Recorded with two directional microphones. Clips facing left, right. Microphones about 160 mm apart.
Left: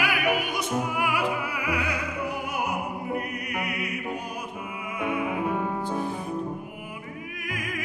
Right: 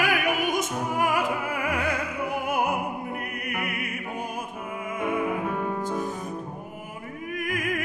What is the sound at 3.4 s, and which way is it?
Music, 55° right (ahead or behind).